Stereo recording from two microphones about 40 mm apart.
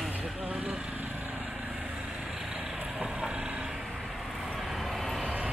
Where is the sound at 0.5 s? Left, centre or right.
Right.